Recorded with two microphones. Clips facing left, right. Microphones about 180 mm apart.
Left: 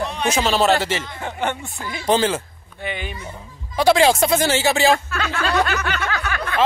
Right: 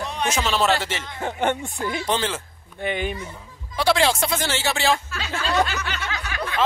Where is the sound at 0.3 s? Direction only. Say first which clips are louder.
Left 4 dB; 30° left (ahead or behind).